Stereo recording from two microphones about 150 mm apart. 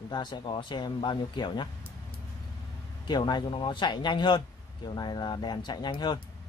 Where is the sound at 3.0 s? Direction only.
30° left (ahead or behind).